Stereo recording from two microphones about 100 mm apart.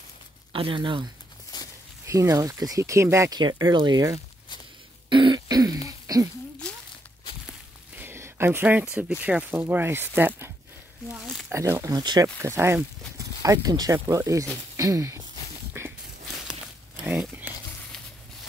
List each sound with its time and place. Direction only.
0.5 s speech: 60° right (ahead or behind)
1.5 s walk: 45° left (ahead or behind)
2.0 s speech: 30° right (ahead or behind)
3.3 s speech: 45° right (ahead or behind)
5.1 s throat clearing: 50° right (ahead or behind)
5.9 s a sound: 40° right (ahead or behind)
6.6 s a sound: 10° left (ahead or behind)
7.9 s a sound: 20° right (ahead or behind)
9.2 s speech: 15° right (ahead or behind)
11.5 s speech: 30° right (ahead or behind)
12.0 s speech: 45° right (ahead or behind)
12.4 s speech: 25° right (ahead or behind)
13.4 s speech: 35° right (ahead or behind)
15.8 s a sound: 25° right (ahead or behind)